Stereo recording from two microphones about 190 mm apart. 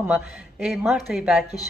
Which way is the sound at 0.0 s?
Centre (ahead or behind).